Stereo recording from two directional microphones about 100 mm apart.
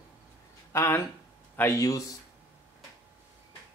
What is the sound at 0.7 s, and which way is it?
Speech, 25° left (ahead or behind).